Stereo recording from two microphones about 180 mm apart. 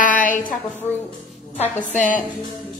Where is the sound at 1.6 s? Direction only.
45° left (ahead or behind).